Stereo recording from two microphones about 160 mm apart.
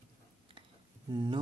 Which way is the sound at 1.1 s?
25° right (ahead or behind).